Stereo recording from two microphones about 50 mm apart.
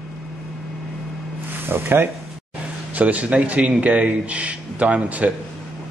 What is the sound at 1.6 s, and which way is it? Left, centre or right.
Speech, right.